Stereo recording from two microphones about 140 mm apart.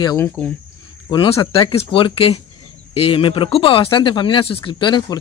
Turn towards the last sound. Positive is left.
turn(degrees=35)  # may be behind; listen again after turning